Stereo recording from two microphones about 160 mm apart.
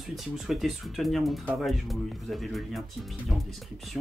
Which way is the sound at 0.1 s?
Centre (ahead or behind).